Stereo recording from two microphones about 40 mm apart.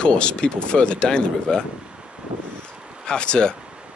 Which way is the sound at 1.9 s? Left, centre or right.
Right.